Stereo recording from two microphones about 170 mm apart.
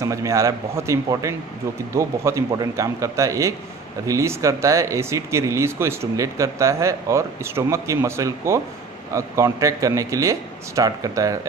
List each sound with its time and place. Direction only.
0.0 s a man's voice: 20° right (ahead or behind)